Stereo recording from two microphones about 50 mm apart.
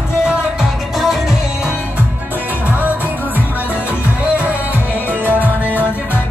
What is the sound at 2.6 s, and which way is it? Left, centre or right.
Music, right.